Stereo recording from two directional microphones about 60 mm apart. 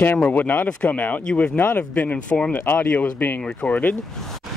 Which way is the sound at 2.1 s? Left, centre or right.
Centre.